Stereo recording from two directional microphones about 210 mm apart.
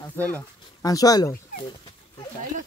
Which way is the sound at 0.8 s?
15° left (ahead or behind).